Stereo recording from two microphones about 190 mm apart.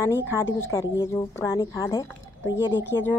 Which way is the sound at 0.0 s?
15° left (ahead or behind).